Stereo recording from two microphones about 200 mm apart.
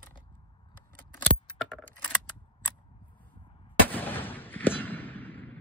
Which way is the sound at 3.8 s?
10° left (ahead or behind).